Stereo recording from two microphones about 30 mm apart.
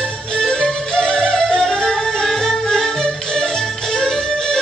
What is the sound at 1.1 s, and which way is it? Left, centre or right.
Music, left.